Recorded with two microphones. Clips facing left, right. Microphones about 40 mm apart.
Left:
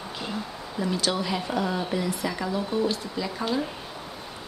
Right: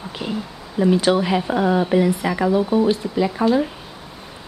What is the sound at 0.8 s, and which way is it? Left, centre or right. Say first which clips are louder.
Speech: right 10 dB; right.